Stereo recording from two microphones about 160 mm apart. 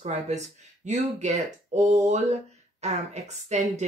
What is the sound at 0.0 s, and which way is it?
Speech, 45° right (ahead or behind).